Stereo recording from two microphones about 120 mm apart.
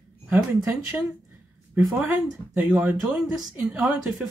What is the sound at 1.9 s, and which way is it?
Speech, 10° right (ahead or behind).